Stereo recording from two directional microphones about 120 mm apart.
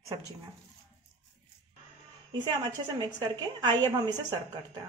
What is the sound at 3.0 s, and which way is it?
A woman's voice, 40° right (ahead or behind).